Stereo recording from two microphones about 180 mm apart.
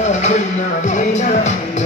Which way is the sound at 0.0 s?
40° left (ahead or behind).